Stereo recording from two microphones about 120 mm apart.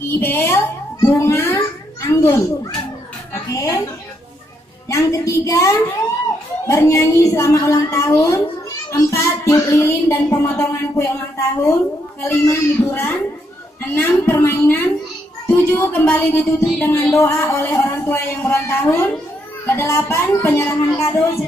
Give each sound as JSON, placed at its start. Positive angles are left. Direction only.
{"t": 0.1, "sound": "a child's voice", "side_deg": 20}
{"t": 3.4, "sound": "speech", "side_deg": 25}
{"t": 4.8, "sound": "speech", "side_deg": 25}